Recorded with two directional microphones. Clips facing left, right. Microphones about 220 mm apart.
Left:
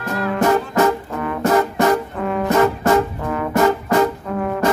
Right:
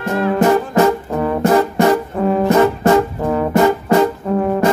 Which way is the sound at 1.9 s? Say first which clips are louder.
Right 4 dB; 30° right (ahead or behind).